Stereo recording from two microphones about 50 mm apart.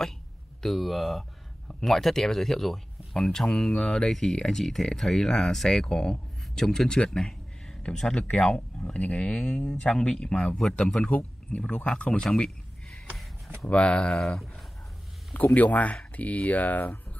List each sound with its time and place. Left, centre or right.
0.6 s speech: centre
13.7 s speech: left
15.5 s speech: left